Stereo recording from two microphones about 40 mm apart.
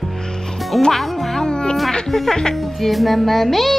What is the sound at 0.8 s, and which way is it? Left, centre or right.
Speech, centre.